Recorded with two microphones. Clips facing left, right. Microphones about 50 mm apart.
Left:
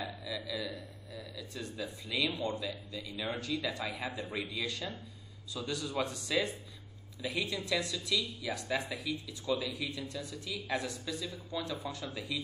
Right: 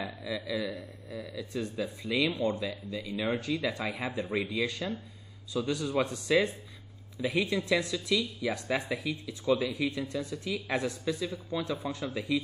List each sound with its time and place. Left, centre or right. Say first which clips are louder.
0.0 s speech: right 4 dB; right